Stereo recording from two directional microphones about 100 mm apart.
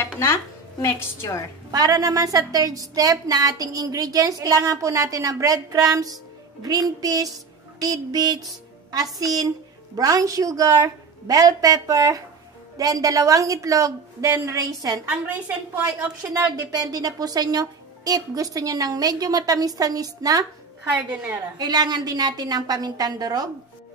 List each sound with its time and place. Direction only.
0.0 s speech: 25° left (ahead or behind)
1.7 s a woman's voice: 35° right (ahead or behind)
15.0 s a woman's voice: 15° right (ahead or behind)
16.2 s a woman's voice: 40° right (ahead or behind)
21.5 s a woman's voice: 45° right (ahead or behind)